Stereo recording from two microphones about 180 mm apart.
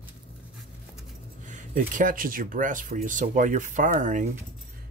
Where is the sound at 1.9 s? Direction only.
50° right (ahead or behind).